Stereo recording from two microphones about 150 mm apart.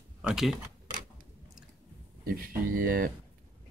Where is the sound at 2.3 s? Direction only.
70° right (ahead or behind).